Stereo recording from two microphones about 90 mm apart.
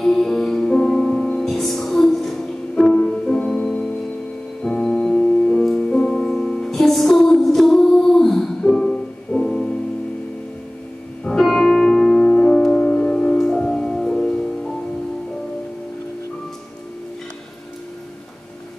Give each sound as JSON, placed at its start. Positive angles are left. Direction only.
{"t": 0.0, "sound": "music", "side_deg": 5}
{"t": 11.2, "sound": "music", "side_deg": 5}